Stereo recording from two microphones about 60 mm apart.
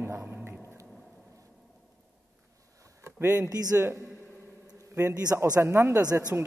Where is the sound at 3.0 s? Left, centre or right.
Right.